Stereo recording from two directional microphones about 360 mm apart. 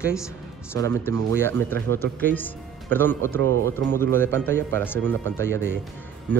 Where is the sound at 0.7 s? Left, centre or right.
Centre.